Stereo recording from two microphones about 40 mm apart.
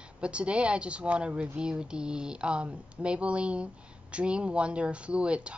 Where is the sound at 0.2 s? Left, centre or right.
Right.